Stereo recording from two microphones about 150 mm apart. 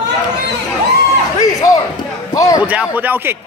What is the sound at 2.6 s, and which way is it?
Speech, 10° right (ahead or behind).